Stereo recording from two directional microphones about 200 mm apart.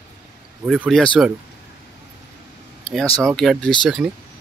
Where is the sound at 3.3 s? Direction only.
Centre (ahead or behind).